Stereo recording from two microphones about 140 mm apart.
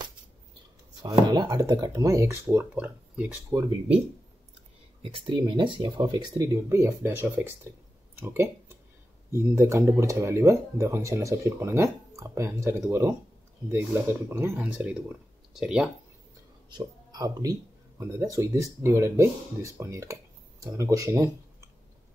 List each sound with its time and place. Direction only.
1.0 s speech: 30° right (ahead or behind)
2.5 s speech: 10° right (ahead or behind)
3.4 s speech: 30° right (ahead or behind)
5.0 s speech: 35° right (ahead or behind); by 15.9 s 5° right (ahead or behind)
16.6 s speech: 30° right (ahead or behind)